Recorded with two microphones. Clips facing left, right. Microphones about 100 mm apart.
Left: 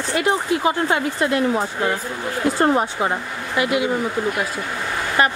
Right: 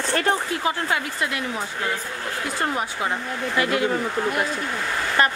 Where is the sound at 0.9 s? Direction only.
30° left (ahead or behind).